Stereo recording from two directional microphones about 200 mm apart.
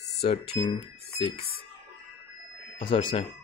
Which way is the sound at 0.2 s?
30° left (ahead or behind).